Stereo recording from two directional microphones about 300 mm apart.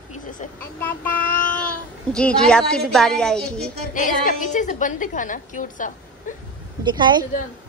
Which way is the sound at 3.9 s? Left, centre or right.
Left.